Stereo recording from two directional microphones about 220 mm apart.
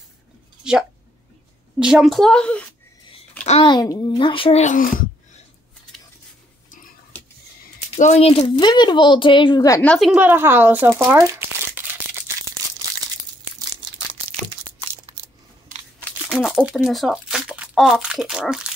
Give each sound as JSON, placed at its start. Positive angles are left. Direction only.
{"t": 1.8, "sound": "a woman's voice", "side_deg": -5}
{"t": 3.4, "sound": "a child's voice", "side_deg": 25}
{"t": 7.9, "sound": "speech", "side_deg": 30}
{"t": 16.0, "sound": "speech", "side_deg": 0}